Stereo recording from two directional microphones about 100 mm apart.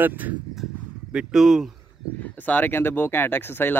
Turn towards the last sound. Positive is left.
turn(degrees=20)  # may be behind; listen again after turning